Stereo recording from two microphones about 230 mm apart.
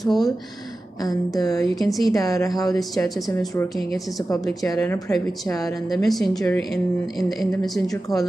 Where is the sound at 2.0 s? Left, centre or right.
Centre.